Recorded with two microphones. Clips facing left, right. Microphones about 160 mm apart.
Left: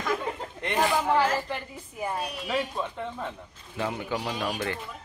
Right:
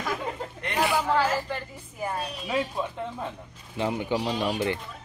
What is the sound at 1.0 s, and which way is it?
Speech, 15° left (ahead or behind).